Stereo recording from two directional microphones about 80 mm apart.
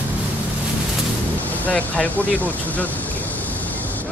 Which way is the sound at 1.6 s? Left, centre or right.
Centre.